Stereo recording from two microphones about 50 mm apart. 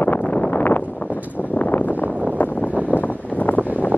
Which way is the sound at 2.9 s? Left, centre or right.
Left.